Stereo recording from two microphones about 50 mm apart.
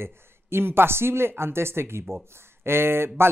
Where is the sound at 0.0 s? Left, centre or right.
Right.